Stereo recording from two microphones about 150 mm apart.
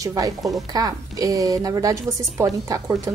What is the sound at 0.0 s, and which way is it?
A woman's voice, 20° right (ahead or behind).